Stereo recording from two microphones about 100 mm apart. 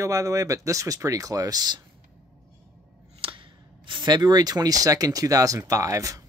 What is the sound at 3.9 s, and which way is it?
Speech, 50° right (ahead or behind).